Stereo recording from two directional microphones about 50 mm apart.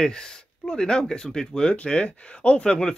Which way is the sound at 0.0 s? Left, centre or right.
Centre.